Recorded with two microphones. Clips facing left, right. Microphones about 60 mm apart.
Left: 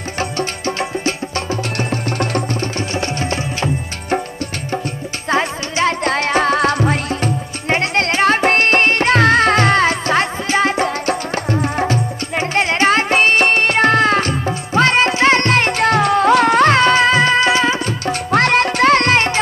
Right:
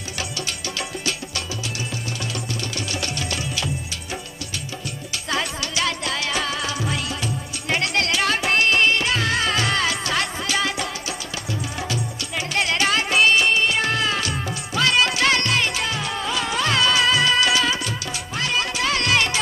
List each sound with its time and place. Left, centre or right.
0.2 s music: left
2.9 s music: left
5.3 s music: left
18.3 s music: left